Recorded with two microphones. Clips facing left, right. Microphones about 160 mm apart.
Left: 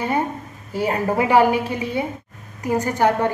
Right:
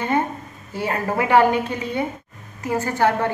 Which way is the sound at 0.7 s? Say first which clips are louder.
Left 3 dB; 15° left (ahead or behind).